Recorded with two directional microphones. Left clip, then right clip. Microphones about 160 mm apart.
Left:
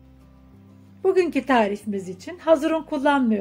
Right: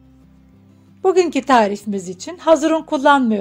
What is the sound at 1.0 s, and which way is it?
A woman's voice, 25° right (ahead or behind).